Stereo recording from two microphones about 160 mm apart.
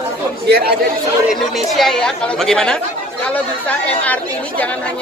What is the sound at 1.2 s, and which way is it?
Speech, centre (ahead or behind).